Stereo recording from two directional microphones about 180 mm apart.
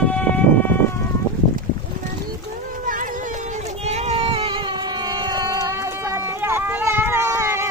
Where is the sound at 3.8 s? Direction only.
35° right (ahead or behind).